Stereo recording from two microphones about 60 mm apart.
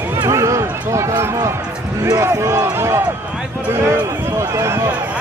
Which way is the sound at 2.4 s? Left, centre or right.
Right.